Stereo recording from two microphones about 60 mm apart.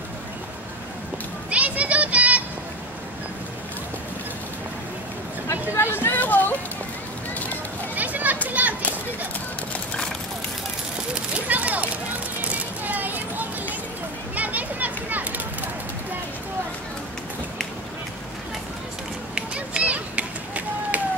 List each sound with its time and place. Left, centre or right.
1.5 s children playing: right
5.5 s a sound: left
6.1 s music: left
7.9 s children playing: right
11.1 s a sound: right
14.3 s children playing: right
19.3 s run: centre